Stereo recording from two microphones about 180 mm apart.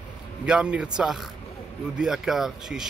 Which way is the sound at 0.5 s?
5° right (ahead or behind).